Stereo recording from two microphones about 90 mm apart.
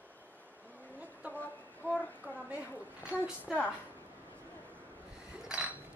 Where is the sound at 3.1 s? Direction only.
10° right (ahead or behind).